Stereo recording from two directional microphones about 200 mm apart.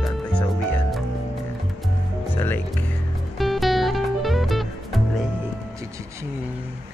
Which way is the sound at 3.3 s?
Centre (ahead or behind).